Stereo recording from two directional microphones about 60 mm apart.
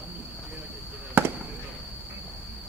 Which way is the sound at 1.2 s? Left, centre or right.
Right.